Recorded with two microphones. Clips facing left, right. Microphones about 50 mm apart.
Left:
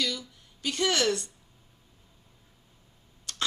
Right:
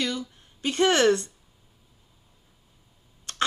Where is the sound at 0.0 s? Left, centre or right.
Right.